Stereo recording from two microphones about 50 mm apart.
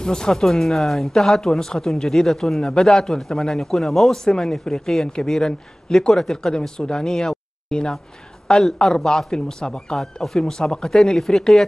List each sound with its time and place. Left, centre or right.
0.0 s speech: centre